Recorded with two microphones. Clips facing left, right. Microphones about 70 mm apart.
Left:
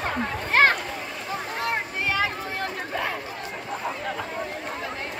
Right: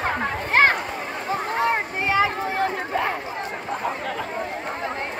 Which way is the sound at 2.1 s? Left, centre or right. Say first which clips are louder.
Right 6 dB; right.